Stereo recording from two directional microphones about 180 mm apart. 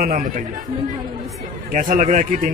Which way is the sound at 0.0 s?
45° right (ahead or behind).